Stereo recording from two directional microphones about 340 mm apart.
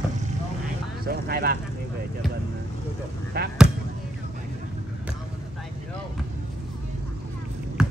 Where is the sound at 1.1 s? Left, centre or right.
Right.